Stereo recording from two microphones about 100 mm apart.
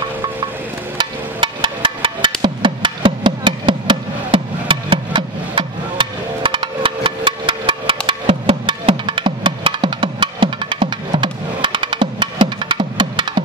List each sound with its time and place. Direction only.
0.9 s music: 55° right (ahead or behind)